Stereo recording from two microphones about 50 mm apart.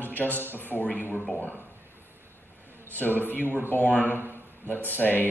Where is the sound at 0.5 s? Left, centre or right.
Left.